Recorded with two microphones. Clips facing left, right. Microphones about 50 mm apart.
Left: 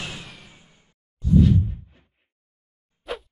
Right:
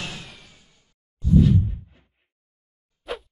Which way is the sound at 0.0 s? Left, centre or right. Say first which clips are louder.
Even; centre.